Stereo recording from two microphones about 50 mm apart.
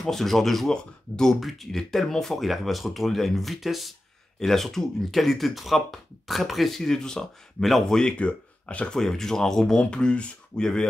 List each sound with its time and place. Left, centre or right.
0.0 s speech: centre
8.2 s speech: left
8.9 s speech: centre
9.8 s speech: centre